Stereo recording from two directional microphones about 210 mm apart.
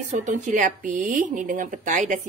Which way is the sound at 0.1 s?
35° right (ahead or behind).